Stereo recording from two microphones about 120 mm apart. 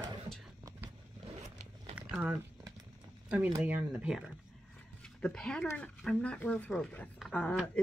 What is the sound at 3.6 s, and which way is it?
Speech, 10° right (ahead or behind).